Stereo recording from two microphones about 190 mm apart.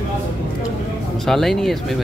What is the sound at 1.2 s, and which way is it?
Speech, centre (ahead or behind).